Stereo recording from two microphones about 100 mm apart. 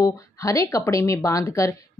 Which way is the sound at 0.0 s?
30° left (ahead or behind).